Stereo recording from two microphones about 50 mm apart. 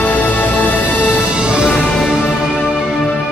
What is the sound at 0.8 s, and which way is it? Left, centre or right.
Music, centre.